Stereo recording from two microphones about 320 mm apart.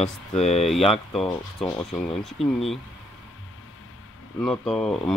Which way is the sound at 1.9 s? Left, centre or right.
Centre.